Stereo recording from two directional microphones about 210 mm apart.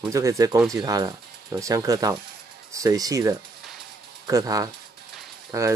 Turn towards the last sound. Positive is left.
turn(degrees=-15)  # may be behind; listen again after turning